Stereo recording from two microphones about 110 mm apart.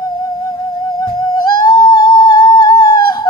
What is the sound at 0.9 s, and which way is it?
Music, 40° left (ahead or behind).